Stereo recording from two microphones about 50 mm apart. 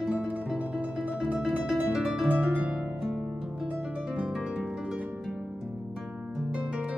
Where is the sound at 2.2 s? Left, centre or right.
Right.